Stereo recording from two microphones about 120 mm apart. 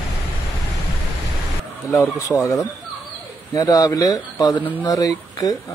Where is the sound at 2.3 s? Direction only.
30° left (ahead or behind).